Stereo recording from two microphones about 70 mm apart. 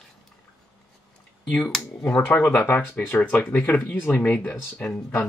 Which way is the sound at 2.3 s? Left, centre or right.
Centre.